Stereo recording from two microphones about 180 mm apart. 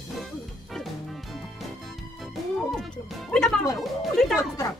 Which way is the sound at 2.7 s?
5° left (ahead or behind).